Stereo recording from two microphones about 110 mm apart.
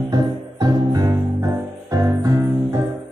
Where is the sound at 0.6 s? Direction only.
35° right (ahead or behind).